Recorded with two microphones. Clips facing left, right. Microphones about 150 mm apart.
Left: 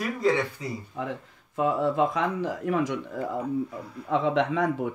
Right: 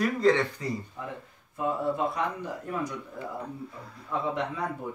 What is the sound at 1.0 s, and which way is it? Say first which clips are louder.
Speech: left 6 dB; 90° left.